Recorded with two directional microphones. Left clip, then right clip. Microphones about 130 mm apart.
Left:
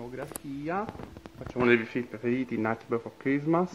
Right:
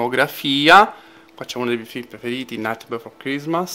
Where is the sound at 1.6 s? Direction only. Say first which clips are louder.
Even; 25° right (ahead or behind).